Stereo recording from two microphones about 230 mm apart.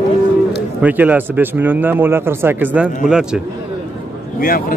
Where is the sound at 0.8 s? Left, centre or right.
Centre.